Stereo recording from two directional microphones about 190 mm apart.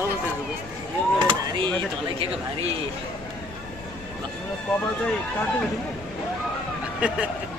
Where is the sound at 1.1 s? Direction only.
25° right (ahead or behind).